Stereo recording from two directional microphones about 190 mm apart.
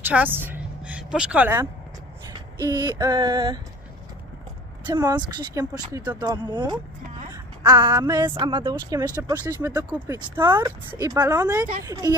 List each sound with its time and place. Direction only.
0.0 s a woman's voice: 10° right (ahead or behind)
2.7 s speech: 20° right (ahead or behind)
4.8 s speech: 20° right (ahead or behind)